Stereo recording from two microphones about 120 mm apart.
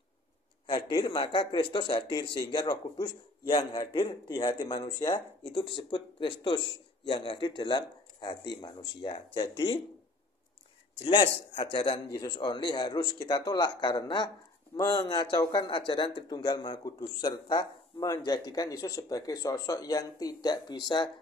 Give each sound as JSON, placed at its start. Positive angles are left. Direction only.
{"t": 0.7, "sound": "speech", "side_deg": 35}
{"t": 11.1, "sound": "speech", "side_deg": 40}
{"t": 11.9, "sound": "speech", "side_deg": 35}